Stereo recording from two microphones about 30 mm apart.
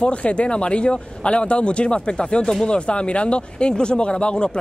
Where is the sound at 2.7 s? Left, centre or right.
Left.